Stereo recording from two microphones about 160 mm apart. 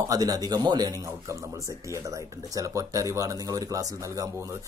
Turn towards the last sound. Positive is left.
turn(degrees=-20)  # may be behind; listen again after turning